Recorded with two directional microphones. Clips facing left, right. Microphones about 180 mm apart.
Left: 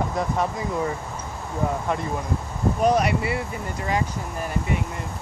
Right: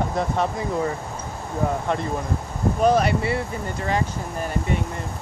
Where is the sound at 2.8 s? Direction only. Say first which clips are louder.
Right 2 dB; 30° right (ahead or behind).